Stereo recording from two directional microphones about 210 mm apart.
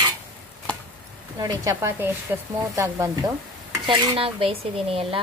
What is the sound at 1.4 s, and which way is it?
Speech, 15° right (ahead or behind).